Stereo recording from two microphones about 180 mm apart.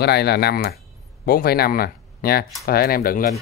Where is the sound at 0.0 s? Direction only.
65° left (ahead or behind).